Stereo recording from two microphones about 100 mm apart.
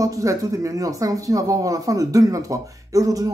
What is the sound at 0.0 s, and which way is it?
Speech, 35° right (ahead or behind).